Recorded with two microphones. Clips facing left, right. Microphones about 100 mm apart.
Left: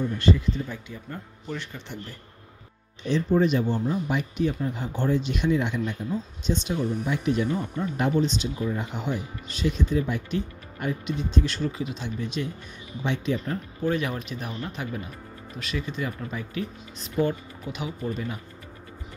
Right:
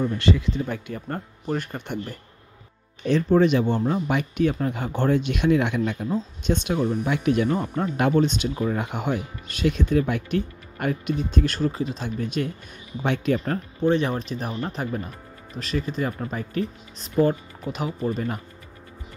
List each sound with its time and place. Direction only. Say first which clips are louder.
0.2 s speech: right 1 dB; 90° right; by 2.1 s 55° right (ahead or behind)
3.1 s speech: right 4 dB; 70° right (ahead or behind)
13.7 s speech: right 5 dB; 30° right (ahead or behind)